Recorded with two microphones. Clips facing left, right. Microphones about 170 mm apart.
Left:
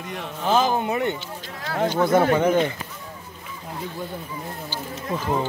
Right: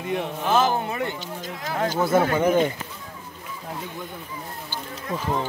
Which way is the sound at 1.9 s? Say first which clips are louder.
Left 2 dB; 5° right (ahead or behind).